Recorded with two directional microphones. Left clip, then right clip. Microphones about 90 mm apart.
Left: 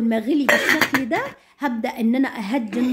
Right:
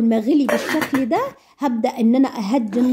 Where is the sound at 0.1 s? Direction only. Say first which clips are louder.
Left 2 dB; 35° right (ahead or behind).